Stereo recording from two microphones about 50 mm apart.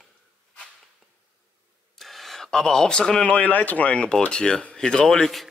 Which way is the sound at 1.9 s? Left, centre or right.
Centre.